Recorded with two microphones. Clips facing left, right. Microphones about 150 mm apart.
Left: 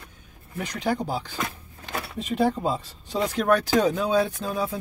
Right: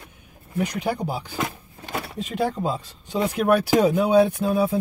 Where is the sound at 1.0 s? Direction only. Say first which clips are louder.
Right 2 dB; 10° right (ahead or behind).